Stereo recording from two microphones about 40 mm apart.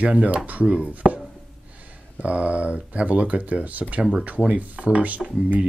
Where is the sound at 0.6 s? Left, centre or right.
Right.